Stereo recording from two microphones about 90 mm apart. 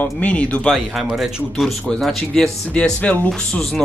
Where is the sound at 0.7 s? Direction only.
Centre (ahead or behind); by 3.6 s 15° left (ahead or behind).